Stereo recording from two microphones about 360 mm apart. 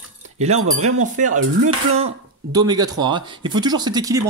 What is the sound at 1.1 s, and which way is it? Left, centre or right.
Music, right.